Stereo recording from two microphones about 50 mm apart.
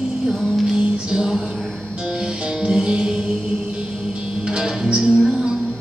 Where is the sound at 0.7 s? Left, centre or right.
Centre.